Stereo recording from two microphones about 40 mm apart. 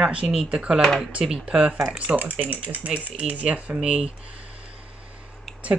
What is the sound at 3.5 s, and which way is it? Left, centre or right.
Speech, right.